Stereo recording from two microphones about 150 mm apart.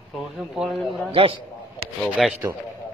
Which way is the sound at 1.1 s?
40° right (ahead or behind).